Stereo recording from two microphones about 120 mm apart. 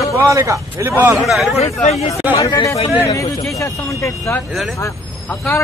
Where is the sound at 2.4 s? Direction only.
30° left (ahead or behind).